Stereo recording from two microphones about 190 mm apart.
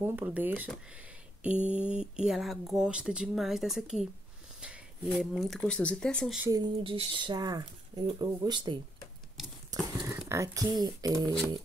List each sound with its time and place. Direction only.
0.0 s speech: 10° right (ahead or behind)
6.4 s speech: 20° right (ahead or behind)